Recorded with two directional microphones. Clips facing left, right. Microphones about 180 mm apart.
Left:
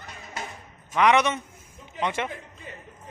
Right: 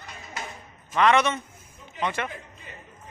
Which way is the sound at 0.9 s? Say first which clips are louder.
Even; 15° left (ahead or behind).